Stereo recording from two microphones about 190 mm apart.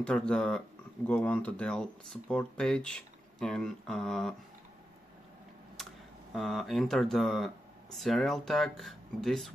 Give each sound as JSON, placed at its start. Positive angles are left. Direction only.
{"t": 0.0, "sound": "speech", "side_deg": 5}
{"t": 6.3, "sound": "speech", "side_deg": 0}